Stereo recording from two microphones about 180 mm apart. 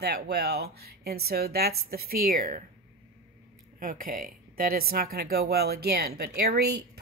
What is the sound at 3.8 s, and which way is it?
Speech, 50° right (ahead or behind).